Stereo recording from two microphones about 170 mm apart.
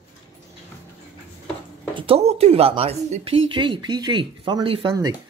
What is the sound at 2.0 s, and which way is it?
Speech, 35° right (ahead or behind).